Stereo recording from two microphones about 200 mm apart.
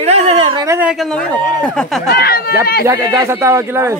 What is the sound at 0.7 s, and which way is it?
Speech, 10° right (ahead or behind).